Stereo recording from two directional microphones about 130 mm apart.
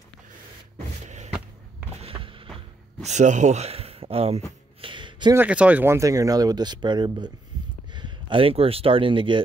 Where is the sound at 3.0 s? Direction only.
65° right (ahead or behind); by 4.4 s 50° right (ahead or behind).